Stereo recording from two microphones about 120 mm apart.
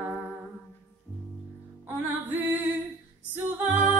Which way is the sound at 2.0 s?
20° right (ahead or behind).